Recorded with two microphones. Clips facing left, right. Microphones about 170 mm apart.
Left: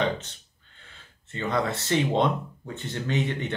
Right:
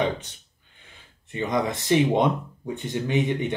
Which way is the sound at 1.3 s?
15° right (ahead or behind).